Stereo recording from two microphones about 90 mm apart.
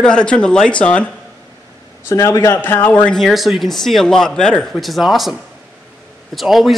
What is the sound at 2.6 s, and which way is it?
Speech, 20° left (ahead or behind).